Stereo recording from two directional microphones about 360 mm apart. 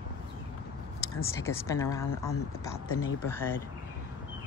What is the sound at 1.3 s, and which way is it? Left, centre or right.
Speech, centre.